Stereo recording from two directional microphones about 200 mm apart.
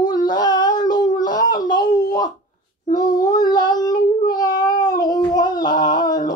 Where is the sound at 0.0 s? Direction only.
20° left (ahead or behind).